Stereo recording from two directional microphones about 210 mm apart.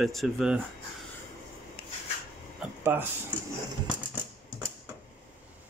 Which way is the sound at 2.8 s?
10° right (ahead or behind).